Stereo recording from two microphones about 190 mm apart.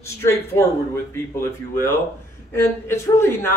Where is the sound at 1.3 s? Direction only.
15° left (ahead or behind).